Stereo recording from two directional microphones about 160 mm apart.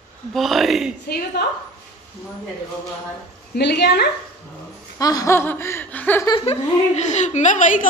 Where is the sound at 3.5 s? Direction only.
90° left.